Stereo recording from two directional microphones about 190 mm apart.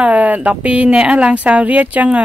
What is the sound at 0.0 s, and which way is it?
Speech, 10° right (ahead or behind).